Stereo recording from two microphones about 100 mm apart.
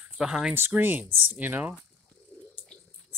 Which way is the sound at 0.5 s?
20° right (ahead or behind).